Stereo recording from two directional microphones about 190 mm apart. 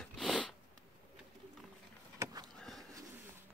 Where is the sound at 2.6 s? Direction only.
Centre (ahead or behind).